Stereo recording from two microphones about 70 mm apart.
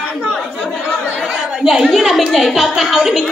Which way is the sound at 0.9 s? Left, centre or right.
Left.